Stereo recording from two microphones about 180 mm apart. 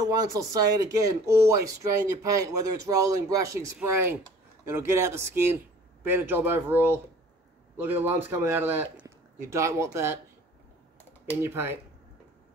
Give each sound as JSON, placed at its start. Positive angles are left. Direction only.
{"t": 0.0, "sound": "speech", "side_deg": -20}
{"t": 11.4, "sound": "speech", "side_deg": -15}